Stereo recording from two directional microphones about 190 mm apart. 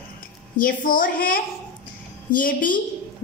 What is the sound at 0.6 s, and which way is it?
A woman's voice, 50° left (ahead or behind).